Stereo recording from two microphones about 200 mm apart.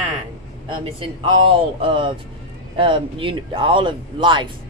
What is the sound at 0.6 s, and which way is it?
Speech, 25° right (ahead or behind).